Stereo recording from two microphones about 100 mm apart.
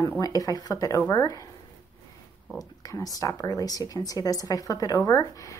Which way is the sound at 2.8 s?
35° left (ahead or behind).